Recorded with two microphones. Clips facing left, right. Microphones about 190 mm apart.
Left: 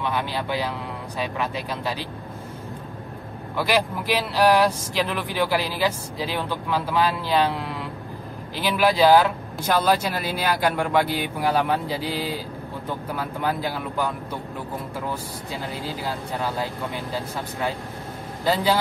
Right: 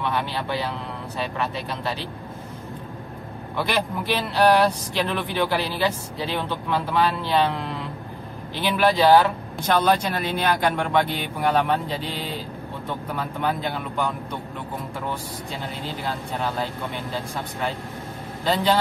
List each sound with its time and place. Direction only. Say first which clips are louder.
0.1 s speech: even; 10° left (ahead or behind)
3.5 s speech: left 2 dB; 10° left (ahead or behind)
18.4 s speech: even; 5° left (ahead or behind)